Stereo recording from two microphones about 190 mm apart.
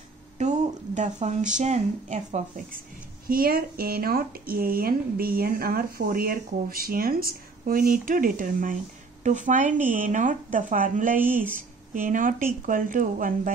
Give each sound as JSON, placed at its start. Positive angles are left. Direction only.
{"t": 0.4, "sound": "a sound", "side_deg": -40}
{"t": 1.6, "sound": "a woman's voice", "side_deg": -35}
{"t": 3.3, "sound": "speech", "side_deg": -50}